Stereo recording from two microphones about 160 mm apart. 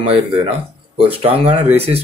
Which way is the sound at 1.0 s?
35° right (ahead or behind).